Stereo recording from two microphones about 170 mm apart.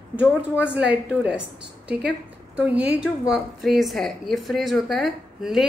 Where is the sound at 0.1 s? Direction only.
10° right (ahead or behind).